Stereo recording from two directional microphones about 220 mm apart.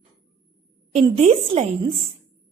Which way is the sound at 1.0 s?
25° right (ahead or behind).